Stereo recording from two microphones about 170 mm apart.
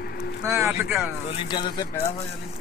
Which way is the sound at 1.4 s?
25° left (ahead or behind).